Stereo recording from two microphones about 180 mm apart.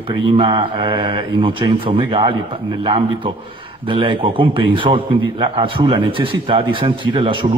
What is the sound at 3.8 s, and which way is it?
A man's voice, 30° right (ahead or behind).